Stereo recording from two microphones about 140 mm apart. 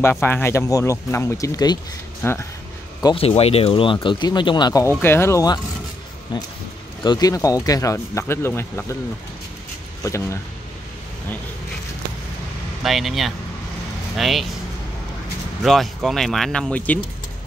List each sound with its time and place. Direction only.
0.0 s speech: 15° left (ahead or behind)
2.2 s speech: 15° left (ahead or behind)
3.2 s speech: 45° left (ahead or behind); by 4.8 s 30° left (ahead or behind)
5.0 s speech: 15° left (ahead or behind)
10.0 s speech: 20° left (ahead or behind)
12.8 s speech: centre (ahead or behind)
15.6 s speech: centre (ahead or behind)